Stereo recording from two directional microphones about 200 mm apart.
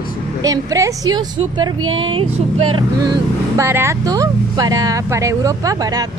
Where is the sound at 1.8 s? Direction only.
85° right.